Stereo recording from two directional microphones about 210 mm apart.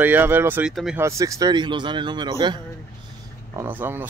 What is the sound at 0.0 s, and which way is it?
Speech, 10° right (ahead or behind).